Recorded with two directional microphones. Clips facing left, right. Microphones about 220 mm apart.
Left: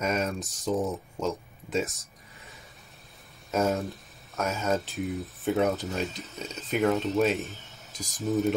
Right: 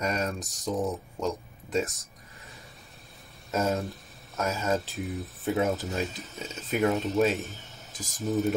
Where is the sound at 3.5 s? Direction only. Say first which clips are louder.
Left 1 dB; centre (ahead or behind).